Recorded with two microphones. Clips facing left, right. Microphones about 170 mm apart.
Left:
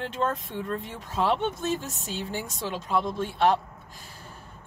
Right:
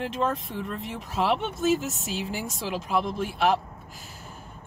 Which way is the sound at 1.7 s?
90° right.